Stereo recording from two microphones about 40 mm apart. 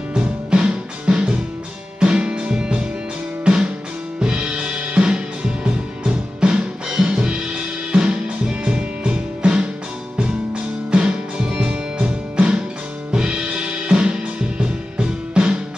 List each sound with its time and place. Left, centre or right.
0.2 s music: right